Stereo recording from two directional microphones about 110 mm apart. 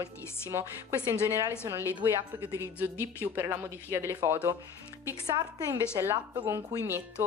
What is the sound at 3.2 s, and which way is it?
A woman's voice, 20° right (ahead or behind).